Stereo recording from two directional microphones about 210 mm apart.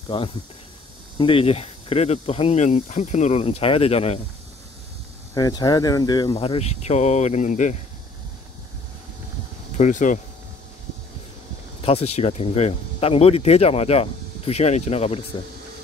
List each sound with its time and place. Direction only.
0.1 s speech: 25° left (ahead or behind)
5.3 s speech: 20° left (ahead or behind); by 7.7 s 35° left (ahead or behind)
9.7 s speech: 35° left (ahead or behind)
11.8 s speech: 30° left (ahead or behind)